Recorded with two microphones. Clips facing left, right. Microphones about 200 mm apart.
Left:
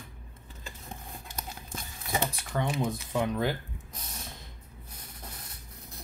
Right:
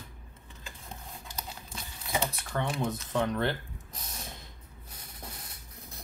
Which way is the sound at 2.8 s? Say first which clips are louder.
Even; 10° left (ahead or behind).